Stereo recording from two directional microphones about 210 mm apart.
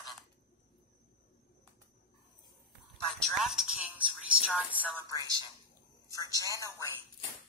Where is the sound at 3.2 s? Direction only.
Centre (ahead or behind).